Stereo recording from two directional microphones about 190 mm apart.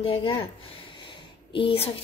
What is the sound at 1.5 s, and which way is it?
Speech, 30° left (ahead or behind).